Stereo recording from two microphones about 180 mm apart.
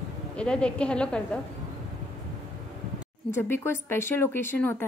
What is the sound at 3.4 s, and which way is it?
Speech, 15° left (ahead or behind).